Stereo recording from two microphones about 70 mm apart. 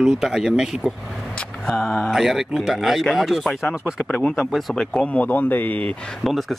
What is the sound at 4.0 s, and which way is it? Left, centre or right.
Speech, centre.